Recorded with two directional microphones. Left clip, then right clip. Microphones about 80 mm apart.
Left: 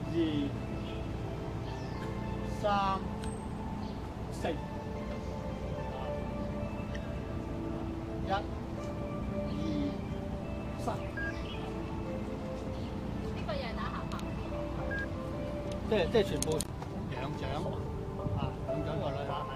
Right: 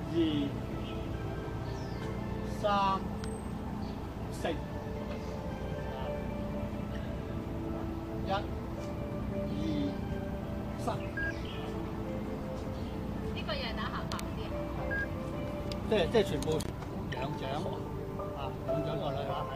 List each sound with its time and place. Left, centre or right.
0.2 s speech: centre
2.6 s speech: centre
15.9 s speech: centre
18.9 s vehicle: centre